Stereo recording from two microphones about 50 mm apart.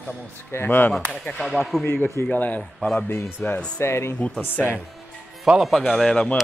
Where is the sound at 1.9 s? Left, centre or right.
Left.